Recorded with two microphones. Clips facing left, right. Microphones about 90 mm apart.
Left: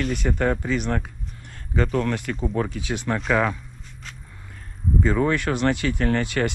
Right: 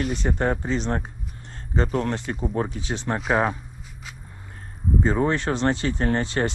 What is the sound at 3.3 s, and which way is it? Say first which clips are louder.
Speech: even; 40° right (ahead or behind).